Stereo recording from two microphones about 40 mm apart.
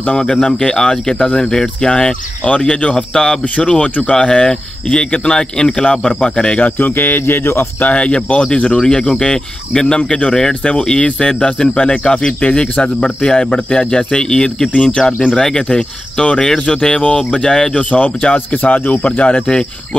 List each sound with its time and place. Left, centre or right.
0.2 s speech: centre
6.6 s speech: left
7.8 s speech: left
10.3 s speech: centre
17.7 s speech: left